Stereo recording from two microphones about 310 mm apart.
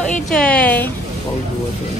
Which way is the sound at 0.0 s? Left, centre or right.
Centre.